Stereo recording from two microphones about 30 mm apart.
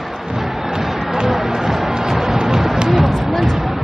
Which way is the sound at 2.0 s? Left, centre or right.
Centre.